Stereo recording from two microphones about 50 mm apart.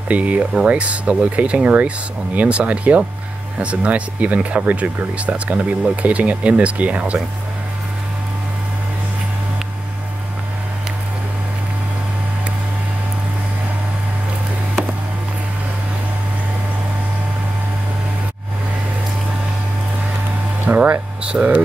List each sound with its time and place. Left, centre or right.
0.1 s speech: right
20.6 s a sound: right
21.2 s speech: centre